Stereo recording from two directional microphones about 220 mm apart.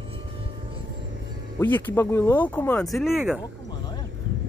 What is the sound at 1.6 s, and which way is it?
Speech, 10° left (ahead or behind).